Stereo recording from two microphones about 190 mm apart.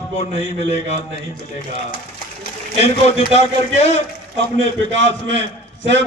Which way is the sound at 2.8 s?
35° left (ahead or behind).